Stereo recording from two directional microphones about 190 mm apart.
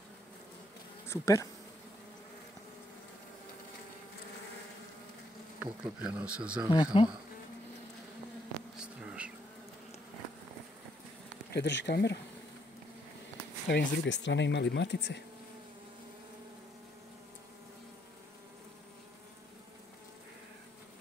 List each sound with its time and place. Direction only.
1.0 s speech: 15° left (ahead or behind)
5.6 s speech: 5° right (ahead or behind)
6.7 s speech: 25° left (ahead or behind)
8.8 s a sound: 5° right (ahead or behind)
11.5 s speech: 65° left (ahead or behind)
13.7 s speech: 65° left (ahead or behind)